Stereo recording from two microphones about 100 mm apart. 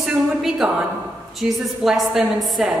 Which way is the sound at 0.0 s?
5° right (ahead or behind).